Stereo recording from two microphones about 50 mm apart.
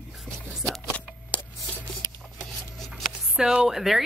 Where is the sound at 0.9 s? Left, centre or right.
Left.